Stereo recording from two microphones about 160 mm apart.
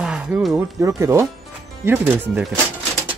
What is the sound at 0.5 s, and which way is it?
Speech, 20° right (ahead or behind).